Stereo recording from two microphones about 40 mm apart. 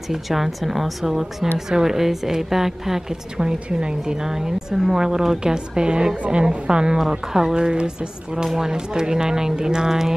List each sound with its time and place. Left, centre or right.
0.1 s a woman's voice: centre
3.5 s a woman's voice: right
4.0 s a woman's voice: centre
8.5 s a woman's voice: centre